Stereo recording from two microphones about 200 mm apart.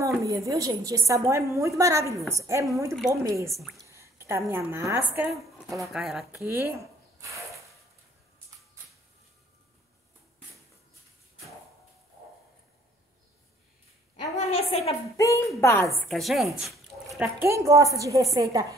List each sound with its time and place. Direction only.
0.2 s speech: 15° right (ahead or behind)
3.5 s a woman's voice: centre (ahead or behind)
3.9 s speech: 15° right (ahead or behind)
6.4 s speech: 15° right (ahead or behind)
14.3 s a sound: 30° left (ahead or behind)
15.1 s a woman's voice: 15° left (ahead or behind)
16.1 s speech: centre (ahead or behind); by 18.8 s 15° right (ahead or behind)